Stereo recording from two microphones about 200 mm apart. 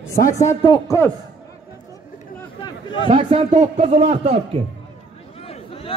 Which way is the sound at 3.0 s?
25° right (ahead or behind).